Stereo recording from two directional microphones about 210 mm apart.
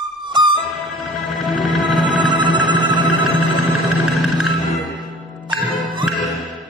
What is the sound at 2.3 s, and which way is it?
Music, 20° right (ahead or behind).